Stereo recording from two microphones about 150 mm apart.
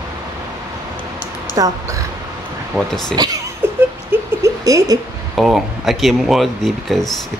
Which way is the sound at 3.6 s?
15° right (ahead or behind).